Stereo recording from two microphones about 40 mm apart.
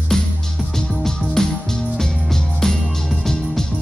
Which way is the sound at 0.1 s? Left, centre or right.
Centre.